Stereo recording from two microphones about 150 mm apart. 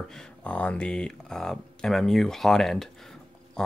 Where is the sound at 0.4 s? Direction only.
10° left (ahead or behind).